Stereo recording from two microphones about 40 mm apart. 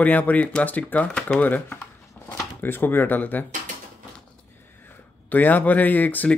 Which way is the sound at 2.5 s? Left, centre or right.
Left.